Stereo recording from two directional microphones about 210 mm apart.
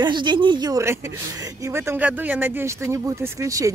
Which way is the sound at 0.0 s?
20° right (ahead or behind).